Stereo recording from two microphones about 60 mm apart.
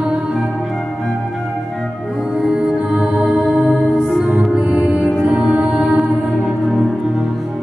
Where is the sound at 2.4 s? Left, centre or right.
Centre.